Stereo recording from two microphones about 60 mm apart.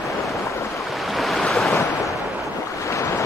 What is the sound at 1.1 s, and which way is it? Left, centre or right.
Waves, centre.